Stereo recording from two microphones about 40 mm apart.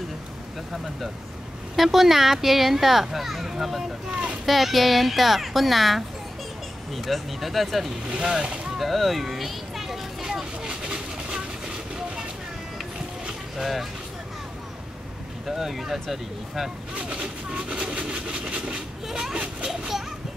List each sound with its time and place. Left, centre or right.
1.8 s speech: centre
8.1 s speech: centre
8.7 s a sound: centre
10.2 s train: centre
15.4 s speech: centre
16.9 s train: right
19.0 s a sound: centre
19.3 s children playing: right